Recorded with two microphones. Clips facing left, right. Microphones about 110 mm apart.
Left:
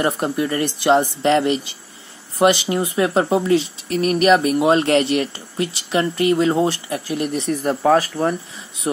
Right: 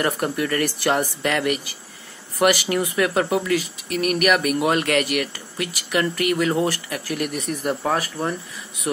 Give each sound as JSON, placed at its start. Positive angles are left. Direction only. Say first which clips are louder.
{"t": 0.0, "sound": "speech", "louder": "left 3 dB", "side_deg": 20}